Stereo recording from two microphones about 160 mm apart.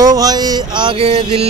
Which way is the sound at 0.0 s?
25° right (ahead or behind).